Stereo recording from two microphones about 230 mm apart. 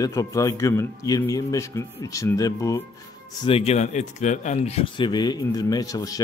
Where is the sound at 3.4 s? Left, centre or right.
Left.